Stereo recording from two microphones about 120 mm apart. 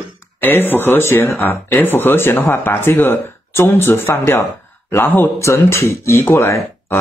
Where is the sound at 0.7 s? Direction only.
15° left (ahead or behind).